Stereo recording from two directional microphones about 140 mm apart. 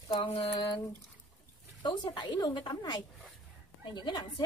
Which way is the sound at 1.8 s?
35° left (ahead or behind).